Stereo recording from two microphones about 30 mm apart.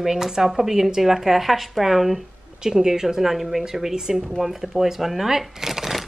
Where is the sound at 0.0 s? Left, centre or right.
Centre.